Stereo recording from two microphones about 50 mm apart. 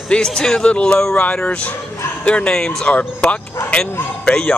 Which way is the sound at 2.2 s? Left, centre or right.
Left.